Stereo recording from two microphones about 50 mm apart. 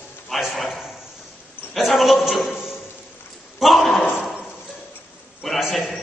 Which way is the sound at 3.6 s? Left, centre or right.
Centre.